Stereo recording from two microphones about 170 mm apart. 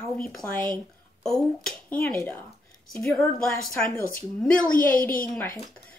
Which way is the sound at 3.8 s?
55° left (ahead or behind).